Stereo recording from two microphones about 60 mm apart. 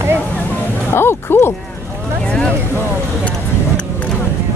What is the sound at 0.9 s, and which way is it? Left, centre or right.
Speech, left.